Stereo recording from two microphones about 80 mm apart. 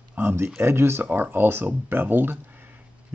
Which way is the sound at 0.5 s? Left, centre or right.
Right.